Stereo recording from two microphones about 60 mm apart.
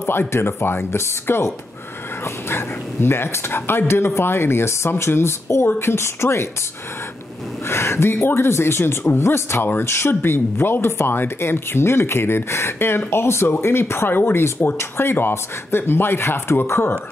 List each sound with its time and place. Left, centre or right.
0.3 s speech: left
2.5 s speech: left
7.6 s speech: left